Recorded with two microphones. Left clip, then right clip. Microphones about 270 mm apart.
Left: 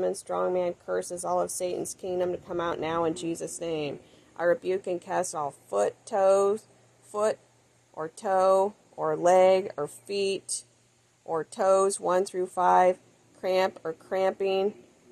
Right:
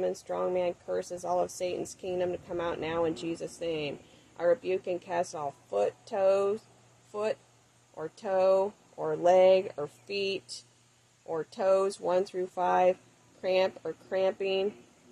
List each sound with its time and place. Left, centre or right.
0.0 s speech: left